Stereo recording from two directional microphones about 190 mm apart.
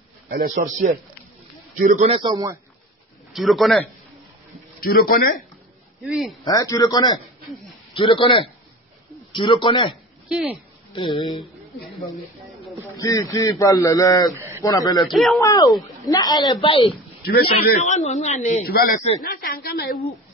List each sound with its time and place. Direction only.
1.8 s speech: 40° right (ahead or behind); by 2.6 s 20° right (ahead or behind)
3.3 s a man's voice: centre (ahead or behind)
4.7 s speech: 50° left (ahead or behind)
6.0 s a man's voice: centre (ahead or behind)
6.4 s speech: 20° left (ahead or behind)
10.2 s speech: 5° right (ahead or behind)
10.9 s speech: 25° left (ahead or behind)
12.9 s speech: 20° left (ahead or behind)
14.3 s a sound: 15° right (ahead or behind)
14.6 s speech: 20° left (ahead or behind)
15.0 s a man's voice: centre (ahead or behind)
15.4 s speech: 20° left (ahead or behind)
17.3 s speech: 45° left (ahead or behind)
18.7 s speech: 55° left (ahead or behind)